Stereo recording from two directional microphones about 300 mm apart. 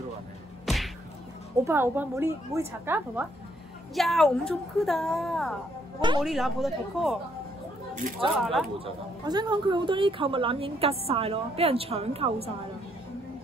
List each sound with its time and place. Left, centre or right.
1.6 s a woman's voice: centre
5.9 s a woman's voice: centre
6.2 s a woman's voice: centre
7.9 s speech: right
8.4 s a woman's voice: centre
8.7 s speech: centre